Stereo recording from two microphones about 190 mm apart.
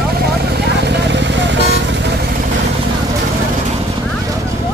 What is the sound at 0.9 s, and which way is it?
Vehicle, 65° right (ahead or behind).